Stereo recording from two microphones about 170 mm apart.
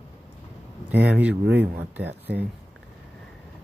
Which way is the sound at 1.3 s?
85° right.